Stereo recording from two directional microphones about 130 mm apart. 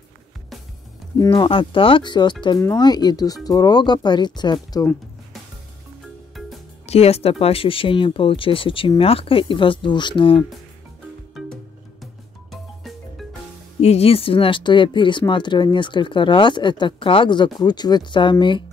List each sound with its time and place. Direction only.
1.1 s speech: 35° left (ahead or behind)
6.9 s speech: 55° left (ahead or behind)
12.0 s music: centre (ahead or behind)
13.7 s speech: 55° left (ahead or behind); by 18.6 s 35° left (ahead or behind)